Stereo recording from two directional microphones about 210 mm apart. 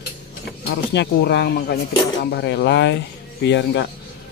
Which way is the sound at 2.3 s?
55° left (ahead or behind).